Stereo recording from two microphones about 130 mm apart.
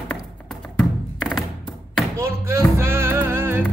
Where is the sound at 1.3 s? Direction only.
5° left (ahead or behind).